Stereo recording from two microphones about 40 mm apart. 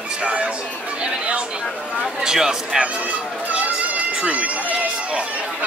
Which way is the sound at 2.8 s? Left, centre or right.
Right.